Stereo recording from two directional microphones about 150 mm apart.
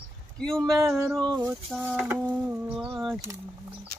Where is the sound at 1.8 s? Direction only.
10° right (ahead or behind).